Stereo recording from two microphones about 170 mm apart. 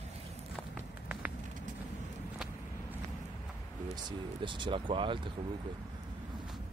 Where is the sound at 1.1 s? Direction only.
10° right (ahead or behind).